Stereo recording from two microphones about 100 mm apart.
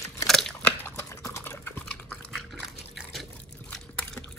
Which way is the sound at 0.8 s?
25° left (ahead or behind).